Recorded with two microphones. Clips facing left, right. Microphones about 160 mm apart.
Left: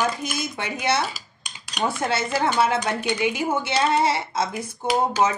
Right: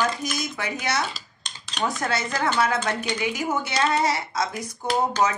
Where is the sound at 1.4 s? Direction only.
10° left (ahead or behind).